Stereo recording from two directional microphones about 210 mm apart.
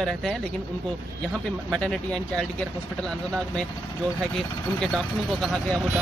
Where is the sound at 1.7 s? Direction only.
5° left (ahead or behind).